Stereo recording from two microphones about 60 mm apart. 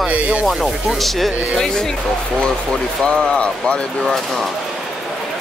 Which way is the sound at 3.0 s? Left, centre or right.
Centre.